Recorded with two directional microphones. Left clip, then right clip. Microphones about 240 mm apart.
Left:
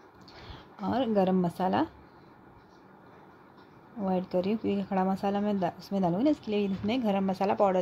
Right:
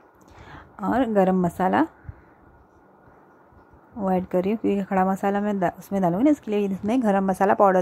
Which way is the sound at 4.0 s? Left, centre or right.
Right.